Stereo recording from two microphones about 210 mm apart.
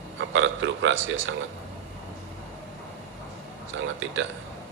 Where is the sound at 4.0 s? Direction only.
65° right (ahead or behind).